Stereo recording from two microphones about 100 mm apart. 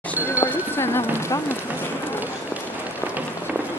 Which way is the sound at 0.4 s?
25° left (ahead or behind).